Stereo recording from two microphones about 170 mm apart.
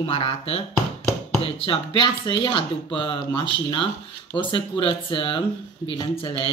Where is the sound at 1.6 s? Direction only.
30° left (ahead or behind).